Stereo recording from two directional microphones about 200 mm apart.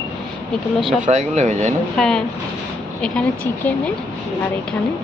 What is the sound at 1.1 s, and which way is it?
Speech, 35° right (ahead or behind).